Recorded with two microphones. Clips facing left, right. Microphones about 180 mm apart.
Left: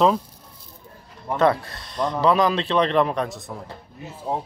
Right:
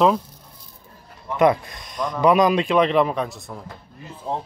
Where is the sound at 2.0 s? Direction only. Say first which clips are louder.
Left 2 dB; 30° left (ahead or behind).